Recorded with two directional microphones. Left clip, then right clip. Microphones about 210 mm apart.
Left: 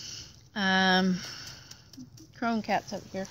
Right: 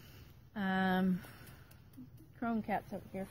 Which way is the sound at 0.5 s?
Centre (ahead or behind).